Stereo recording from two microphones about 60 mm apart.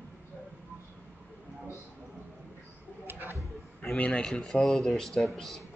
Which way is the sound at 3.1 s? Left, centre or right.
Right.